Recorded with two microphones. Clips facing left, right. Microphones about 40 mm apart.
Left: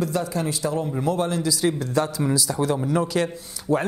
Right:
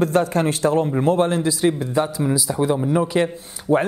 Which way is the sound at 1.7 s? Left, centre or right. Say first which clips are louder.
Right 2 dB; centre.